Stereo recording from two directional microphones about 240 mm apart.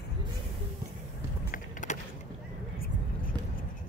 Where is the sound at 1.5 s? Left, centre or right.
Left.